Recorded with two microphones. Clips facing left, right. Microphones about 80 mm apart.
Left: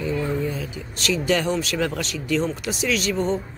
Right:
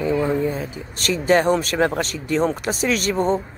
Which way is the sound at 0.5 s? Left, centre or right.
Right.